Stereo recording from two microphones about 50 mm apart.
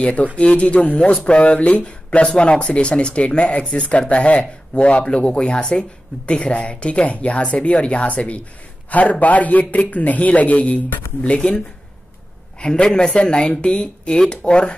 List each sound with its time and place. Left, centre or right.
0.0 s a man's voice: left